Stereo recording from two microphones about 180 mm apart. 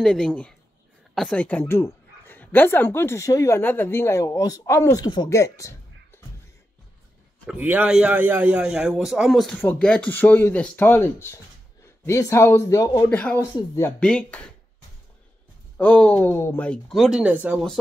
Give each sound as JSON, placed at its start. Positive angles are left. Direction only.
{"t": 0.0, "sound": "a man's voice", "side_deg": 5}
{"t": 7.4, "sound": "a man's voice", "side_deg": -10}
{"t": 13.1, "sound": "speech", "side_deg": 10}
{"t": 15.8, "sound": "speech", "side_deg": 10}